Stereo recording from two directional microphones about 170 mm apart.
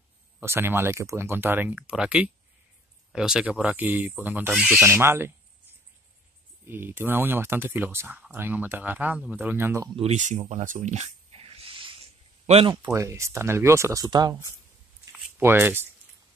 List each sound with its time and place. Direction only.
0.4 s speech: 15° right (ahead or behind)
6.7 s speech: 10° right (ahead or behind)
9.9 s a sound: 40° right (ahead or behind)
12.7 s speech: 20° right (ahead or behind)